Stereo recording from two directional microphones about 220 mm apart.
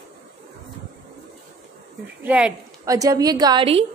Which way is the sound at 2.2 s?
5° right (ahead or behind).